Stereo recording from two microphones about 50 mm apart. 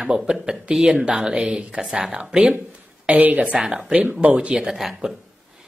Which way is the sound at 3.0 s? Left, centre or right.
Right.